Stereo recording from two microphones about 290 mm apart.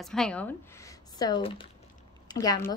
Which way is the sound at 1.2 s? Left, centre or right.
Centre.